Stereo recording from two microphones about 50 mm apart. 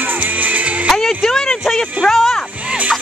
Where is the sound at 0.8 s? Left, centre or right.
Centre.